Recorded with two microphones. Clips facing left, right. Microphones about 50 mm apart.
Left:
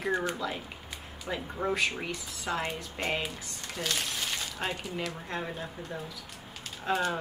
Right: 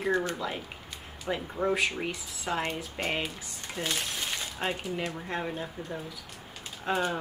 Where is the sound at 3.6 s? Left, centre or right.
Right.